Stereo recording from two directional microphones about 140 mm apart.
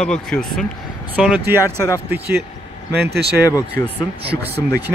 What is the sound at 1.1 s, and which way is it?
Speech, 10° right (ahead or behind).